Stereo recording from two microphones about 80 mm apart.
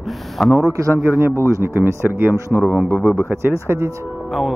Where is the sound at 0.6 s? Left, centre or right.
Right.